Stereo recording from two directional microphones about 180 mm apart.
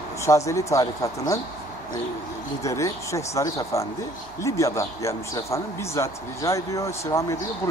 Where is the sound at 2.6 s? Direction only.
15° left (ahead or behind).